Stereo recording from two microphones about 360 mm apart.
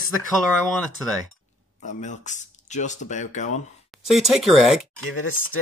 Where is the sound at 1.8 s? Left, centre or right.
Centre.